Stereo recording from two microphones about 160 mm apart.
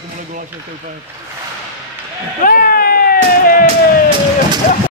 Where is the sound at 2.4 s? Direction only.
60° left (ahead or behind).